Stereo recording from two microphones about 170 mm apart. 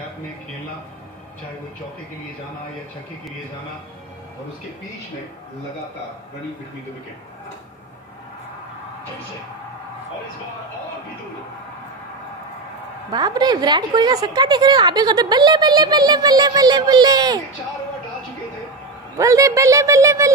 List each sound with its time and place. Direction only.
13.1 s a woman's voice: 25° right (ahead or behind)
19.1 s a woman's voice: 20° right (ahead or behind)